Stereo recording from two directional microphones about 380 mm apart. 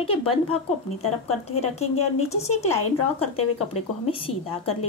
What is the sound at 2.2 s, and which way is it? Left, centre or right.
Speech, centre.